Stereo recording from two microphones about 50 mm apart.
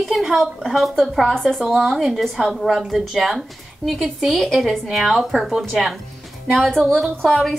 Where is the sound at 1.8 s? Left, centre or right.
Centre.